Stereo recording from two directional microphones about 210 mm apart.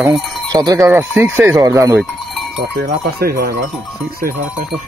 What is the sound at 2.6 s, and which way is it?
Speech, 50° right (ahead or behind).